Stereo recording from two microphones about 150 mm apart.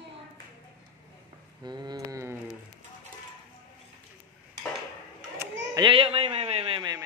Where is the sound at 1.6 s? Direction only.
30° right (ahead or behind).